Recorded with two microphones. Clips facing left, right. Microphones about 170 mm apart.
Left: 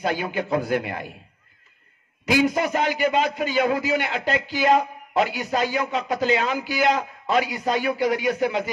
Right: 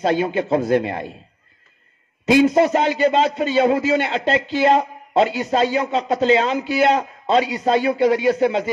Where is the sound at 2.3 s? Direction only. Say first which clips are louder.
Right 7 dB; 25° right (ahead or behind).